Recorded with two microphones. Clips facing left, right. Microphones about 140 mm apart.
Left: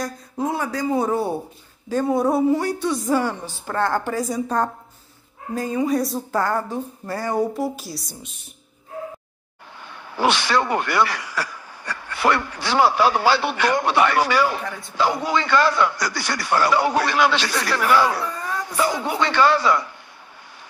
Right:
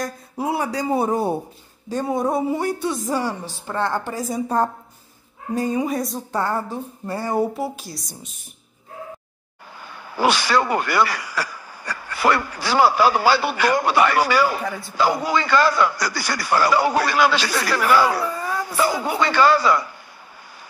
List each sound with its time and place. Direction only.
0.0 s a woman's voice: 10° right (ahead or behind)
2.1 s speech: centre (ahead or behind)
3.6 s a woman's voice: 20° right (ahead or behind)
4.0 s speech: centre (ahead or behind)
5.5 s speech: 10° right (ahead or behind)
9.8 s speech: 5° right (ahead or behind)